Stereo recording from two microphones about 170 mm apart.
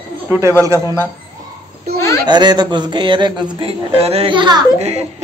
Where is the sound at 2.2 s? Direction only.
25° right (ahead or behind).